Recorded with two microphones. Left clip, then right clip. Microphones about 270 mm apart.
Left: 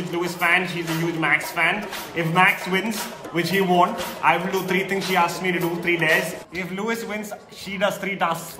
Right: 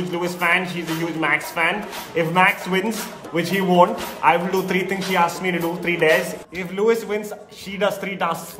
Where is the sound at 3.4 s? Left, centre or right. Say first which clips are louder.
Right 2 dB; centre.